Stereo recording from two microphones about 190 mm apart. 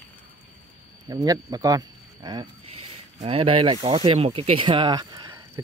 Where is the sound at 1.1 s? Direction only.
20° right (ahead or behind).